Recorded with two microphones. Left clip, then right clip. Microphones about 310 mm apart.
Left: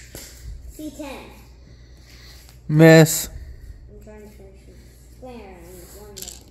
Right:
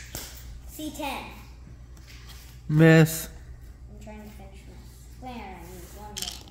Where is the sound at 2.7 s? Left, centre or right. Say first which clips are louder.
Left 7 dB; left.